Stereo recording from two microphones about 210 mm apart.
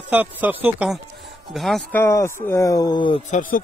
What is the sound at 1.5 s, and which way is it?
Music, centre (ahead or behind).